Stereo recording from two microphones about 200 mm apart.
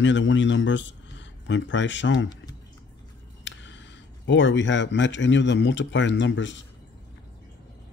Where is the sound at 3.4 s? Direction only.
65° left (ahead or behind).